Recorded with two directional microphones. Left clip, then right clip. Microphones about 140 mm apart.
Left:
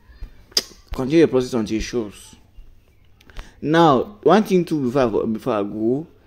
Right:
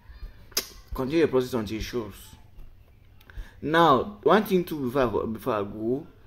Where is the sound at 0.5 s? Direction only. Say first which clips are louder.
Left 7 dB; 40° left (ahead or behind).